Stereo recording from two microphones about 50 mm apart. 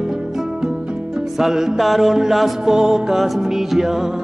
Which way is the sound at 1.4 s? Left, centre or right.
Centre.